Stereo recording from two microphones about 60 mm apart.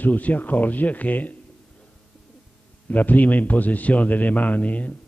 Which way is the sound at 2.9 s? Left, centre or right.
Left.